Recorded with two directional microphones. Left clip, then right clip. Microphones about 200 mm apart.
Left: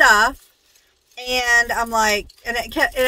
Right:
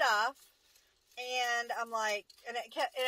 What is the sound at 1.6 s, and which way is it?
A woman's voice, 20° left (ahead or behind).